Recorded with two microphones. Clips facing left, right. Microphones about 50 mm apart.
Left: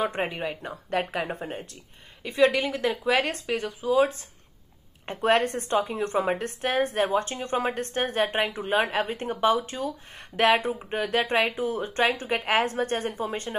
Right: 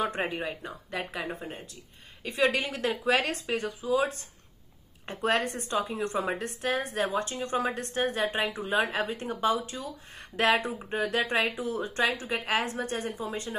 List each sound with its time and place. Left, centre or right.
0.0 s a woman's voice: left
2.5 s a woman's voice: left